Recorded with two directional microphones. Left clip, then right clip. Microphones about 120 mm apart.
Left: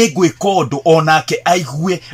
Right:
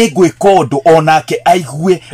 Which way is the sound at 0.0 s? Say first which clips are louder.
Right 4 dB; 20° right (ahead or behind).